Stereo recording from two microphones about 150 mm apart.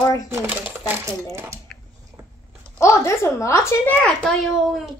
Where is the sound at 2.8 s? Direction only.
20° left (ahead or behind).